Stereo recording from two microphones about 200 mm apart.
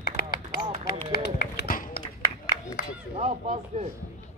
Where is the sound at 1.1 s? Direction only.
55° left (ahead or behind).